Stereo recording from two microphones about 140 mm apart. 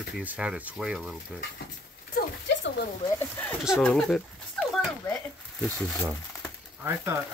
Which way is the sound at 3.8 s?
5° left (ahead or behind).